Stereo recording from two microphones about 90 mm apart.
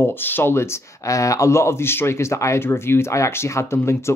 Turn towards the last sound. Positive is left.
turn(degrees=30)  # may be behind; listen again after turning